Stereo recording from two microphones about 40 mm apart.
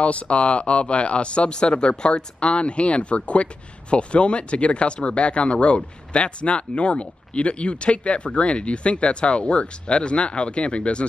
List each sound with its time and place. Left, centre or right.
0.0 s speech: left